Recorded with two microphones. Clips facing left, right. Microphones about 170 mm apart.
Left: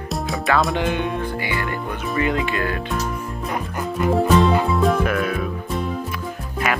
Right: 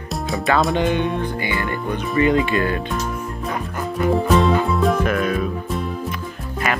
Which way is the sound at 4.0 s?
Centre (ahead or behind).